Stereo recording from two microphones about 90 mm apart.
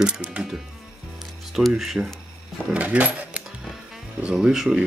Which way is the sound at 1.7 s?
10° right (ahead or behind).